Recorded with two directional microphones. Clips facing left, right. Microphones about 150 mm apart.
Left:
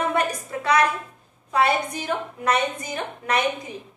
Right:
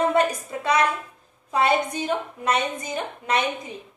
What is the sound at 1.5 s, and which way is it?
A woman's voice, 20° right (ahead or behind).